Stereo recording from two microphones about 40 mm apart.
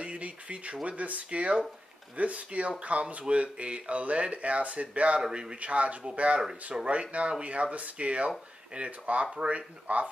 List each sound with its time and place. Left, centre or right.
0.0 s a sound: right
0.8 s speech: right
5.2 s a man's voice: right
5.6 s speech: right